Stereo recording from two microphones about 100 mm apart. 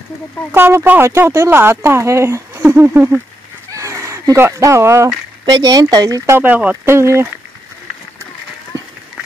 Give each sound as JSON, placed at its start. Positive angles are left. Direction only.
{"t": 0.5, "sound": "speech", "side_deg": -25}
{"t": 5.4, "sound": "speech", "side_deg": -45}
{"t": 6.3, "sound": "speech", "side_deg": -20}
{"t": 6.9, "sound": "speech", "side_deg": -25}